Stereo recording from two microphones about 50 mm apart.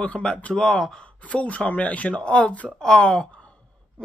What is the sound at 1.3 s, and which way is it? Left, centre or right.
Speech, left.